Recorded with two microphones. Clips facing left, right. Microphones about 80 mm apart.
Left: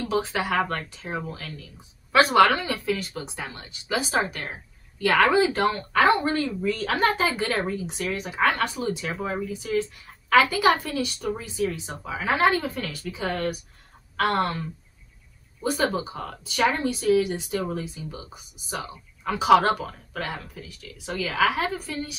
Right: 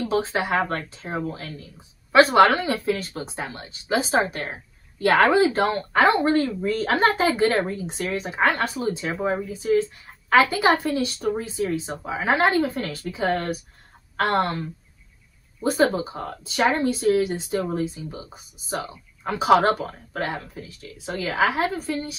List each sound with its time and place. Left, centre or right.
0.0 s a woman's voice: right
15.8 s a woman's voice: right